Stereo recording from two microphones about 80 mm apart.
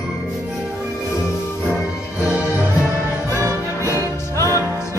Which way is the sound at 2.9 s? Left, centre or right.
Left.